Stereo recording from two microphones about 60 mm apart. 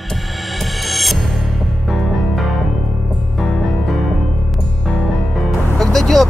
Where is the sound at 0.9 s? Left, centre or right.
Centre.